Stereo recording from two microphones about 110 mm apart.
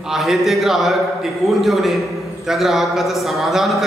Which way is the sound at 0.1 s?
5° right (ahead or behind).